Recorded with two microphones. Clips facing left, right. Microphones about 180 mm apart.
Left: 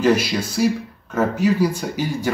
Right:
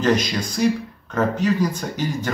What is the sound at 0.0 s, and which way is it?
Speech, 10° left (ahead or behind).